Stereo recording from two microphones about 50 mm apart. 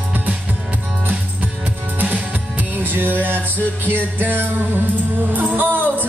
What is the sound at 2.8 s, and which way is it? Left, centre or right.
Music, right.